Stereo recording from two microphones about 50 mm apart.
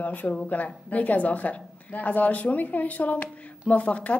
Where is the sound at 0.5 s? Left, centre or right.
Left.